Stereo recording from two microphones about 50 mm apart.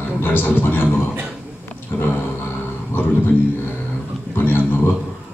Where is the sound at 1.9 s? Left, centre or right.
Left.